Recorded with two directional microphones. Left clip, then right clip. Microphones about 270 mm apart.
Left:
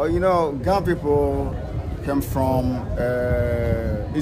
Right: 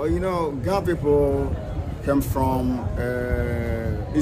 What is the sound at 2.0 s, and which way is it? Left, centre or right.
Speech, centre.